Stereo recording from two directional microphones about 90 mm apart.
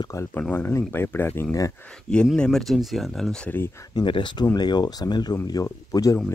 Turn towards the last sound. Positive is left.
turn(degrees=40)  # may be behind; listen again after turning